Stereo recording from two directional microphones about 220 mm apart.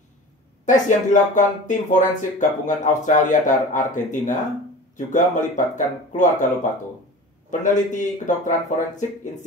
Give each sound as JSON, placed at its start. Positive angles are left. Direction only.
{"t": 0.7, "sound": "speech", "side_deg": 35}